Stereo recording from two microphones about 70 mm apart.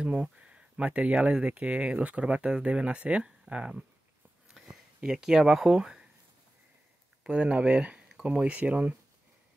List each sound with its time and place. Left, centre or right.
0.0 s speech: centre
4.5 s a sound: centre
7.2 s speech: centre